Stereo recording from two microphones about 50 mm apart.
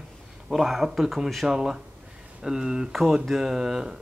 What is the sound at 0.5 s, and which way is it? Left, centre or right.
Speech, centre.